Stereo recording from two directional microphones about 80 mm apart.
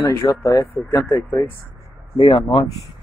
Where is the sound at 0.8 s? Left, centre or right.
Centre.